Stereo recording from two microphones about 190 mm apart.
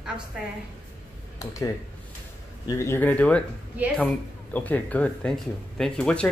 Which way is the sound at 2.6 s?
15° left (ahead or behind).